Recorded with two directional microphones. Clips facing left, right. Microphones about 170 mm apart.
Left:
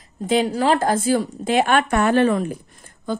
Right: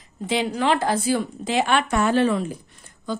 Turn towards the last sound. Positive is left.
turn(degrees=50)  # may be behind; listen again after turning